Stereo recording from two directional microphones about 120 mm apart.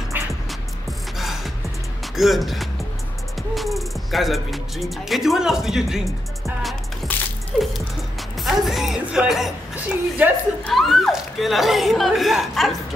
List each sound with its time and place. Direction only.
0.1 s music: 15° right (ahead or behind)
1.1 s music: centre (ahead or behind)
2.1 s speech: centre (ahead or behind)
7.0 s music: centre (ahead or behind)
10.7 s speech: centre (ahead or behind)